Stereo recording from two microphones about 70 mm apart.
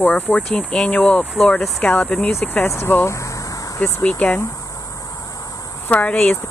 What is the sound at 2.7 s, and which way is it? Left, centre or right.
Speech, left.